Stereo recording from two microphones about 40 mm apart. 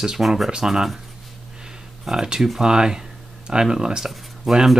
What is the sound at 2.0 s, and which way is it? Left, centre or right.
Speech, centre.